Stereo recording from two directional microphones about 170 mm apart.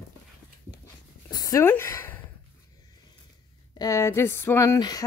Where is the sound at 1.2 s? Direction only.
20° left (ahead or behind).